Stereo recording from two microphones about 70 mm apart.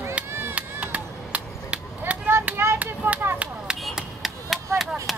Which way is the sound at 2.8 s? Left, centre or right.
Right.